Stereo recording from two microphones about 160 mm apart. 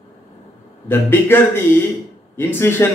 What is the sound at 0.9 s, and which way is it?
Speech, 15° left (ahead or behind).